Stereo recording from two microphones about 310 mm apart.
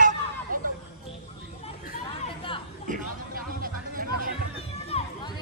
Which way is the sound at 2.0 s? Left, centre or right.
Centre.